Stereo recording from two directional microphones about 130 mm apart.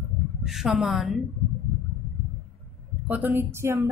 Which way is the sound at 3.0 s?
15° right (ahead or behind).